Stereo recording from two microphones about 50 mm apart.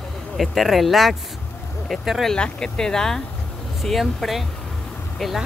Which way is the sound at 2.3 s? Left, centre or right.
Centre.